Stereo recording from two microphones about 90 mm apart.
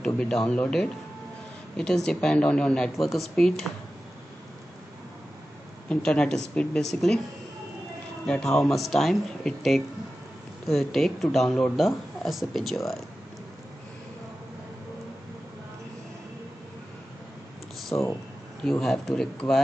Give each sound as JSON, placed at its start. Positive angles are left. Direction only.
{"t": 0.0, "sound": "speech", "side_deg": 10}
{"t": 5.9, "sound": "speech", "side_deg": 10}
{"t": 8.3, "sound": "speech", "side_deg": 5}
{"t": 17.9, "sound": "speech", "side_deg": 25}
{"t": 18.6, "sound": "speech", "side_deg": 5}